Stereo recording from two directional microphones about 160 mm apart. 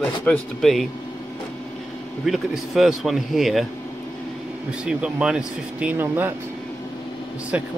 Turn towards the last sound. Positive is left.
turn(degrees=-10)  # may be behind; listen again after turning